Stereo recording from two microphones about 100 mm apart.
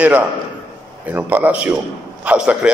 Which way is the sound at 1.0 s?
15° right (ahead or behind).